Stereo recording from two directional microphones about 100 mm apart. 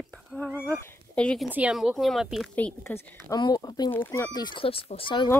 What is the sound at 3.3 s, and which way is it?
Speech, 45° left (ahead or behind).